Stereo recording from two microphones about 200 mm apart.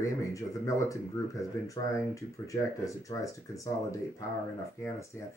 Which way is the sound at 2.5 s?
15° left (ahead or behind).